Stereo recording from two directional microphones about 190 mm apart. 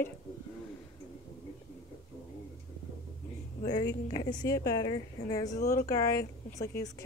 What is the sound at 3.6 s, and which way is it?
A woman's voice, 20° left (ahead or behind).